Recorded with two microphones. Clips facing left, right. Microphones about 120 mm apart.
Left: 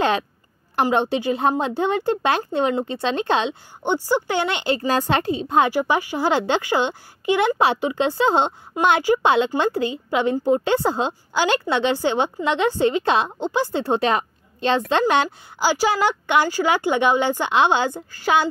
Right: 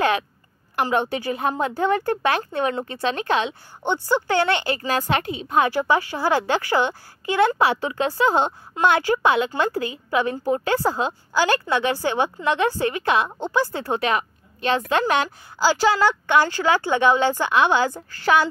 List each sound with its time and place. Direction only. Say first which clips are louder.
0.7 s speech: left 3 dB; 25° left (ahead or behind)
3.8 s speech: left 1 dB; 15° left (ahead or behind)
4.7 s a woman's voice: left 2 dB; 30° left (ahead or behind)
5.7 s speech: even; 15° left (ahead or behind)
15.6 s speech: right 1 dB; 15° left (ahead or behind)